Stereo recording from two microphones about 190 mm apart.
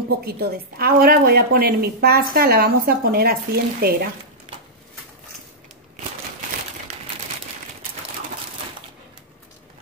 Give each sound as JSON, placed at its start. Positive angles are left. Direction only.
{"t": 0.2, "sound": "a woman's voice", "side_deg": -55}